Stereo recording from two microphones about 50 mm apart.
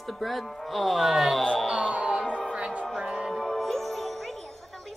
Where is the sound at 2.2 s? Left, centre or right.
Left.